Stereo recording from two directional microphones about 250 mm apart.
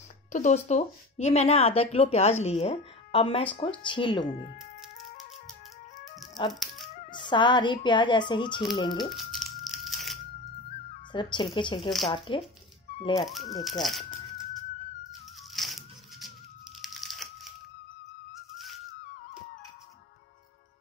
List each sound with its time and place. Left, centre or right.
0.3 s speech: left
6.5 s music: centre
6.9 s speech: left
9.1 s tearing: centre
10.9 s speech: centre
13.8 s bird: centre
15.5 s music: centre
16.8 s a sound: centre